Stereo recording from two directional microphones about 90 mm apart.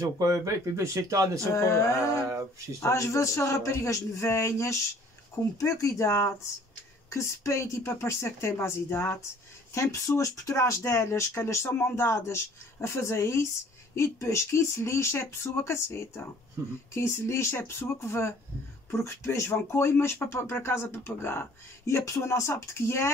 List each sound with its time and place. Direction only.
0.0 s speech: 35° right (ahead or behind)
1.5 s speech: 35° left (ahead or behind)